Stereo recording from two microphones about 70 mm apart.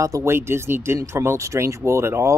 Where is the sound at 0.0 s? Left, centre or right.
Right.